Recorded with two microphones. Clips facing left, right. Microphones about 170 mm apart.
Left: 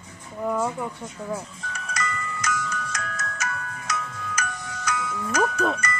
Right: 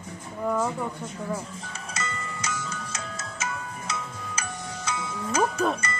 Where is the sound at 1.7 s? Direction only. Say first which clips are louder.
Left 5 dB; 25° right (ahead or behind).